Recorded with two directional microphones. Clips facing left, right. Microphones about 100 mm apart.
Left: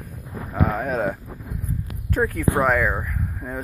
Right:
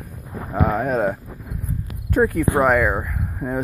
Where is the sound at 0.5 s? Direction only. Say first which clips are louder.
Right 3 dB; 5° right (ahead or behind).